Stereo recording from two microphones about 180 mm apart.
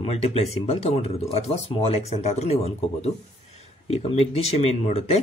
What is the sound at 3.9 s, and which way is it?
Speech, 35° left (ahead or behind).